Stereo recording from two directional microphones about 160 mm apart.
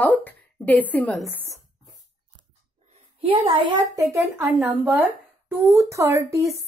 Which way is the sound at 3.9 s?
20° right (ahead or behind).